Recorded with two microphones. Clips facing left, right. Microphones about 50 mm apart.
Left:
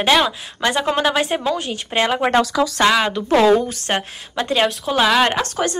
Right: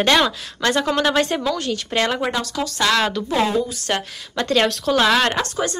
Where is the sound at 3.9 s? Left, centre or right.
Centre.